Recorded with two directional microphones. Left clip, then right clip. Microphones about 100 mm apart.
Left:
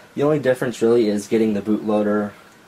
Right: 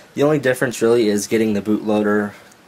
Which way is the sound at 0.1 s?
60° right (ahead or behind).